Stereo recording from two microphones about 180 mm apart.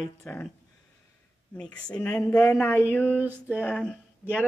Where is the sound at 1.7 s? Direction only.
5° left (ahead or behind).